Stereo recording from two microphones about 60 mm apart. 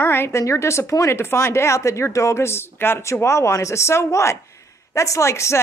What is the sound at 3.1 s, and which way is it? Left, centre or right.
Speech, left.